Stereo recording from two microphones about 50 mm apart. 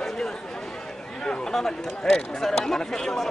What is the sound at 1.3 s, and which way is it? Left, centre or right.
Speech, centre.